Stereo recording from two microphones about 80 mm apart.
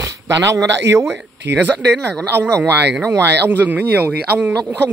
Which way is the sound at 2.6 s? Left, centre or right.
Right.